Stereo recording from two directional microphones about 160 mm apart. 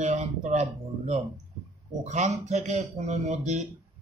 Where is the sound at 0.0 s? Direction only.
45° right (ahead or behind).